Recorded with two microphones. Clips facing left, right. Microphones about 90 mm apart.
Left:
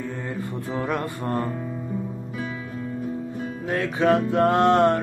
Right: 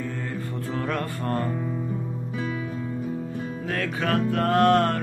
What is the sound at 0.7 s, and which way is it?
Music, 15° left (ahead or behind).